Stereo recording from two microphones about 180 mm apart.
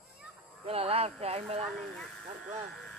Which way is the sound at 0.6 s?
35° right (ahead or behind).